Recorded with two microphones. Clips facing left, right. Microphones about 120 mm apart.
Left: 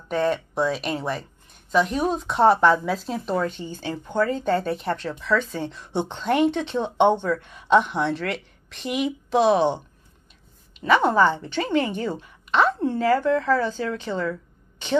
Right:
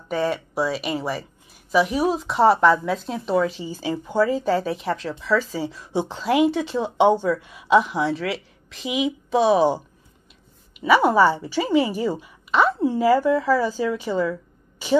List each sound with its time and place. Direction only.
0.1 s speech: centre (ahead or behind)